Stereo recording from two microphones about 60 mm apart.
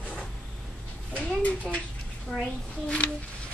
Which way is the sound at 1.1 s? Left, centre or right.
Left.